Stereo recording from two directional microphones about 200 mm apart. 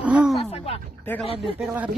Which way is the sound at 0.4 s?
30° left (ahead or behind).